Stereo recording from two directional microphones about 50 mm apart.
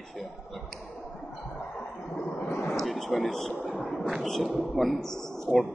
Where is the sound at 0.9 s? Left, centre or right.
Left.